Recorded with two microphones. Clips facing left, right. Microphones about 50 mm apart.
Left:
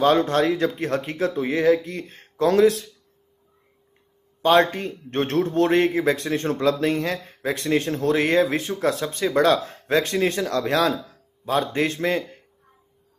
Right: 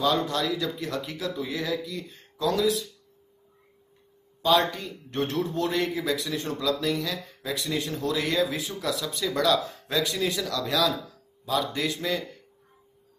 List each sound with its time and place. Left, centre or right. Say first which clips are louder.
0.0 s a man's voice: left 7 dB; left
4.4 s a man's voice: left 5 dB; left